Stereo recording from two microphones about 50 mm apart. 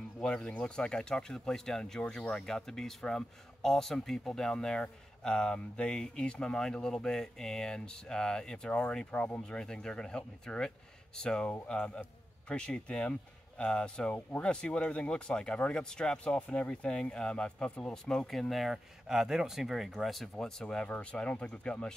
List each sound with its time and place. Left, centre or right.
0.2 s speech: centre
9.5 s speech: centre
14.1 s speech: left
14.5 s speech: centre
18.3 s speech: centre
20.3 s speech: centre
20.6 s speech: left